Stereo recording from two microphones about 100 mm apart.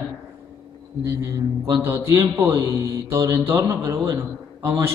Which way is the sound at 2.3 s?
25° right (ahead or behind).